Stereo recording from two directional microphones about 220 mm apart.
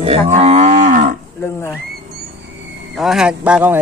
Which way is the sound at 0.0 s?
30° right (ahead or behind).